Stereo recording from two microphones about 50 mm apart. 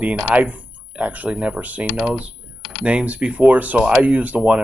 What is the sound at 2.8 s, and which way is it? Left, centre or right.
Speech, right.